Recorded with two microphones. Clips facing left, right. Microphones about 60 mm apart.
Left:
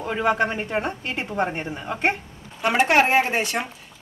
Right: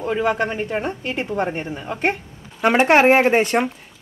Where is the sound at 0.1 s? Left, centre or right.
Centre.